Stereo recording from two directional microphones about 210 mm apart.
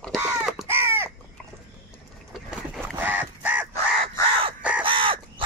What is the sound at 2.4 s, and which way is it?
Crow, 10° right (ahead or behind).